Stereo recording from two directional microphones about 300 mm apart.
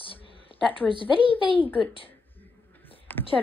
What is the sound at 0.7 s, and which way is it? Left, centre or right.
A woman's voice, centre.